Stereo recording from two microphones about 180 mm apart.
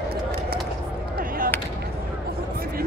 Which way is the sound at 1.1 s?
50° right (ahead or behind).